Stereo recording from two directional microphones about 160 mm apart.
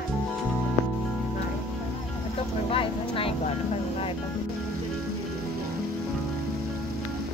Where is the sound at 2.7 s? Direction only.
35° left (ahead or behind).